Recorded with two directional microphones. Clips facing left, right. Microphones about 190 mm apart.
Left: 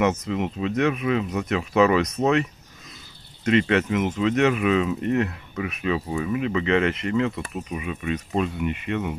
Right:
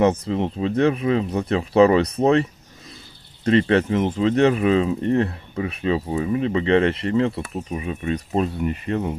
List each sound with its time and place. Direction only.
0.0 s speech: 30° right (ahead or behind)
3.4 s speech: 35° right (ahead or behind)